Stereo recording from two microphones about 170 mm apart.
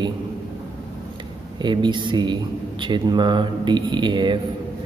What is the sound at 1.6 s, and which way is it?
Speech, 25° right (ahead or behind).